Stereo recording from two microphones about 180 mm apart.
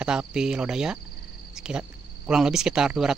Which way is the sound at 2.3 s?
5° right (ahead or behind).